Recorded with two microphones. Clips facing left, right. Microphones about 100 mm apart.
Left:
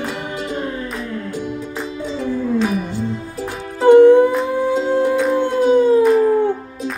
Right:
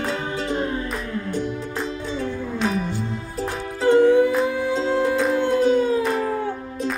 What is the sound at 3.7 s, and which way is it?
Music, 20° left (ahead or behind).